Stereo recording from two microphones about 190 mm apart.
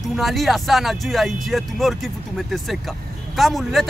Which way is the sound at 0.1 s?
Centre (ahead or behind).